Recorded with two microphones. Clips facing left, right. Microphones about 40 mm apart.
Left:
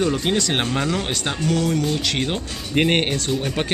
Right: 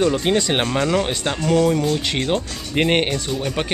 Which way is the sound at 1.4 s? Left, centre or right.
Right.